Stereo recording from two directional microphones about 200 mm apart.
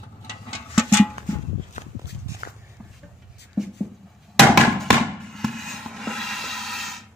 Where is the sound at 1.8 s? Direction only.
35° left (ahead or behind).